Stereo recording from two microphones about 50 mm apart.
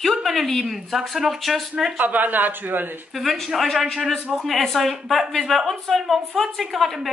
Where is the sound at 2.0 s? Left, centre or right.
Right.